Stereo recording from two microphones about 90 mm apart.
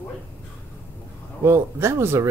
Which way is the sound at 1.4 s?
30° right (ahead or behind).